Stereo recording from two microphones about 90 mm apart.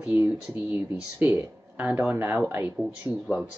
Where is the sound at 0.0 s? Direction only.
15° right (ahead or behind).